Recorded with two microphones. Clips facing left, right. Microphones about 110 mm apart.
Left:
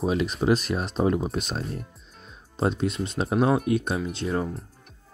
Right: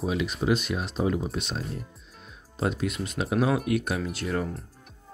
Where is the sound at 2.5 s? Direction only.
30° left (ahead or behind).